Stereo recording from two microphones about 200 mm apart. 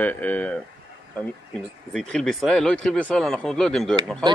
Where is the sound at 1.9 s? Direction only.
5° left (ahead or behind).